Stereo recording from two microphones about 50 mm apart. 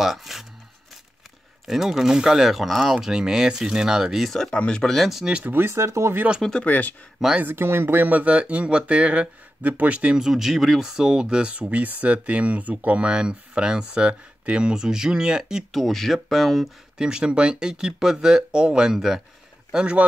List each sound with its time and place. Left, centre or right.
0.0 s a sound: centre
1.7 s speech: centre
4.3 s speech: centre
4.9 s speech: centre
5.4 s speech: right
5.7 s speech: right
6.6 s speech: left
7.4 s speech: right
8.1 s speech: right
10.1 s speech: centre
15.7 s speech: centre
17.0 s speech: centre
19.7 s speech: centre